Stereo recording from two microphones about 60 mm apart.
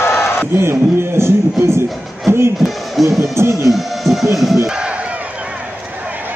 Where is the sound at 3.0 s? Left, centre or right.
Right.